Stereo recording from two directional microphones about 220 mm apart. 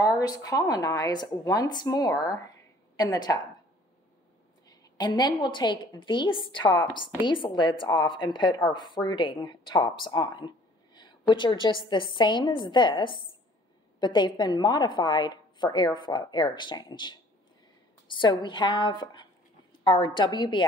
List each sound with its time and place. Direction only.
0.0 s a woman's voice: 15° left (ahead or behind)
4.6 s a woman's voice: 20° left (ahead or behind)